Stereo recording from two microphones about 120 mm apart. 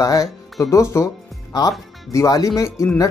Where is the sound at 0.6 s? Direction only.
25° left (ahead or behind).